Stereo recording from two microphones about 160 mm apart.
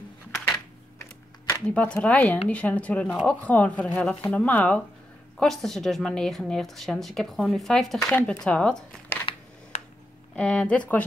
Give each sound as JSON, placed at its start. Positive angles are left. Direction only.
{"t": 0.9, "sound": "typewriter", "side_deg": 20}
{"t": 1.7, "sound": "a woman's voice", "side_deg": 5}
{"t": 8.0, "sound": "speech", "side_deg": 15}
{"t": 10.3, "sound": "speech", "side_deg": 5}